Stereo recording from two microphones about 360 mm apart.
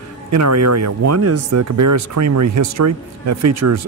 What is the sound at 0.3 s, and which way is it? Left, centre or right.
Speech, right.